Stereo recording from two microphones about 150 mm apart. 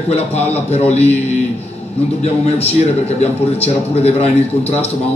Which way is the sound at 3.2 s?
45° left (ahead or behind).